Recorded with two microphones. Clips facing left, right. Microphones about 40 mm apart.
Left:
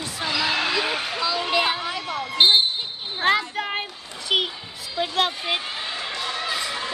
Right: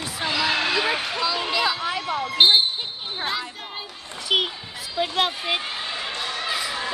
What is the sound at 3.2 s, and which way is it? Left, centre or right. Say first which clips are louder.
Speech: left 10 dB; left.